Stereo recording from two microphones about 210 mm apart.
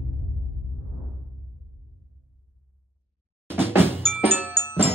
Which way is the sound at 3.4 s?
10° right (ahead or behind).